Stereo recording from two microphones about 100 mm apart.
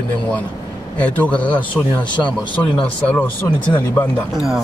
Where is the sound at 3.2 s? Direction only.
20° left (ahead or behind).